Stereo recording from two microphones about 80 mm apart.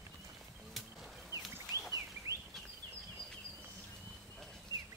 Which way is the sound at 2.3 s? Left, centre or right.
Left.